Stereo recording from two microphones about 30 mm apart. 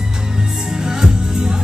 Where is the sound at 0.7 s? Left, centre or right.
Centre.